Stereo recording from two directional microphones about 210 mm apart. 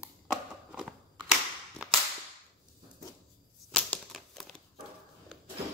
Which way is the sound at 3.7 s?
5° left (ahead or behind).